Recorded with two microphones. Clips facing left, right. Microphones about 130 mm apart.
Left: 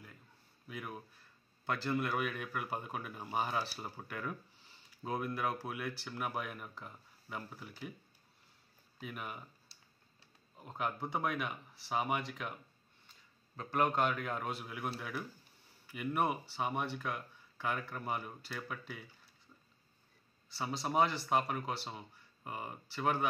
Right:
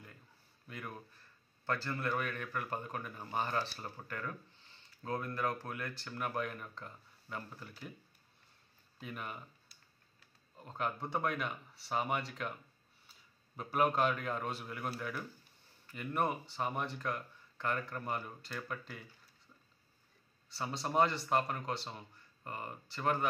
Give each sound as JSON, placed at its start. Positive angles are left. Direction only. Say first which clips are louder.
{"t": 0.7, "sound": "speech", "louder": "left 1 dB", "side_deg": 5}
{"t": 9.0, "sound": "speech", "louder": "even", "side_deg": 5}
{"t": 9.7, "sound": "finger snapping", "louder": "left 1 dB", "side_deg": 30}
{"t": 10.6, "sound": "a man's voice", "louder": "even", "side_deg": 5}
{"t": 20.4, "sound": "speech", "louder": "left 1 dB", "side_deg": 0}